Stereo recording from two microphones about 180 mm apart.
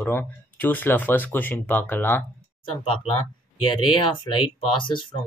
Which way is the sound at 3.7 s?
25° left (ahead or behind).